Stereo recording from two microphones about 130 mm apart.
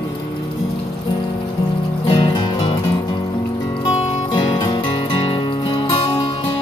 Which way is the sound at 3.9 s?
50° left (ahead or behind).